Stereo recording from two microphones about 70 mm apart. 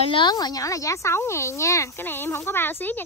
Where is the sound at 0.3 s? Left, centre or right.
Left.